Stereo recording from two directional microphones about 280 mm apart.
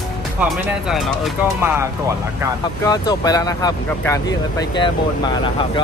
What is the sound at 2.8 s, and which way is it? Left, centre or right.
Speech, centre.